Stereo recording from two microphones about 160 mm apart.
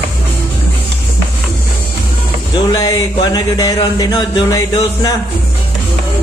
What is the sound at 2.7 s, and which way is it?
Music, 25° left (ahead or behind).